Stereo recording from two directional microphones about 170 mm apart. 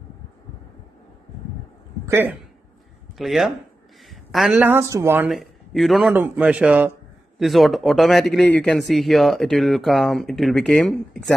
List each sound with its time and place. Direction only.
2.0 s a man's voice: 15° right (ahead or behind)
3.2 s speech: centre (ahead or behind)
5.3 s a man's voice: centre (ahead or behind)